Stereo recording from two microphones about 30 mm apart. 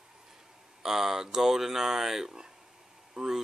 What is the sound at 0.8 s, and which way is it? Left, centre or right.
Speech, centre.